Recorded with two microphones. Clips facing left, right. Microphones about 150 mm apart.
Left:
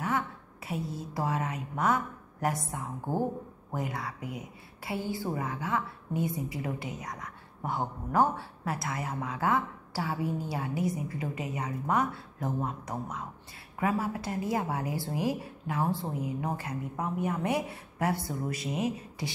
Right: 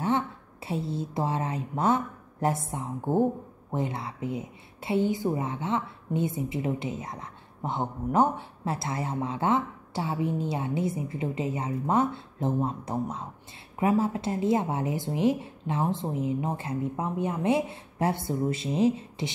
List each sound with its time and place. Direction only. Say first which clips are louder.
0.7 s a woman's voice: right 5 dB; 25° right (ahead or behind)